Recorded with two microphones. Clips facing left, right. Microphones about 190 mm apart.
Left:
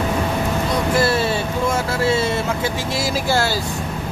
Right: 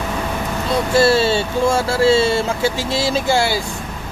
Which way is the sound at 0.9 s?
30° right (ahead or behind).